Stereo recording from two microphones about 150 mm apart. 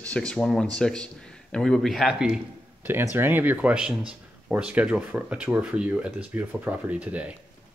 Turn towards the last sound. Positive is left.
turn(degrees=-10)  # may be behind; listen again after turning